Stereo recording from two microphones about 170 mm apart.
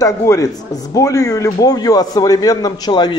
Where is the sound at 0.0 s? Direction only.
20° left (ahead or behind).